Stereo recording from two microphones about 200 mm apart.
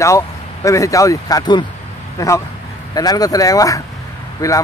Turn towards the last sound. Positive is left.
turn(degrees=15)  # may be behind; listen again after turning